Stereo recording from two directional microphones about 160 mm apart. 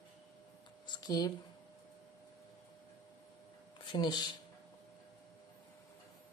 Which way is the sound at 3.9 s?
25° left (ahead or behind).